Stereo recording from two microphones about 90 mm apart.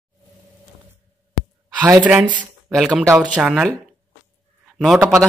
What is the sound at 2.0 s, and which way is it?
Speech, 15° right (ahead or behind).